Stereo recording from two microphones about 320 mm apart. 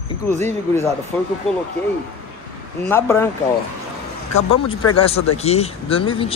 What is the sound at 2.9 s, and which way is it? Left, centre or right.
Speech, centre.